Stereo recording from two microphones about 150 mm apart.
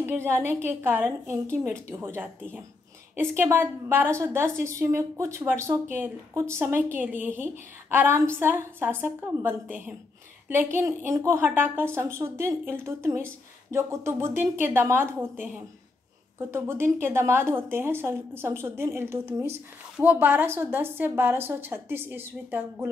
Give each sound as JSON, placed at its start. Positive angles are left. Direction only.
{"t": 0.0, "sound": "a woman's voice", "side_deg": -15}